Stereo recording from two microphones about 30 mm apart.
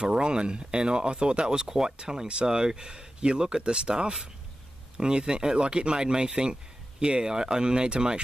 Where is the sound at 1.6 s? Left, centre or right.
Centre.